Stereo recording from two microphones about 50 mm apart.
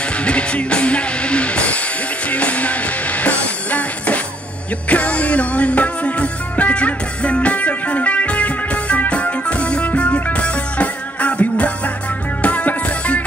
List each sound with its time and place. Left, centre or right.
0.2 s music: left